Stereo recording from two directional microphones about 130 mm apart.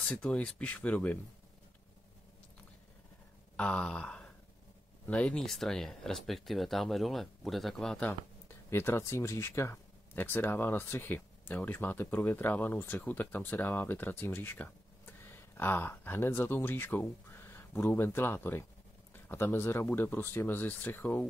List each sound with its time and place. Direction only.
0.0 s speech: 10° left (ahead or behind)
3.5 s a sound: 10° left (ahead or behind)
5.0 s speech: 10° left (ahead or behind)